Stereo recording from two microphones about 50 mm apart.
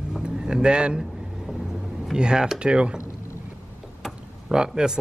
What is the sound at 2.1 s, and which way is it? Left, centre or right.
Speech, centre.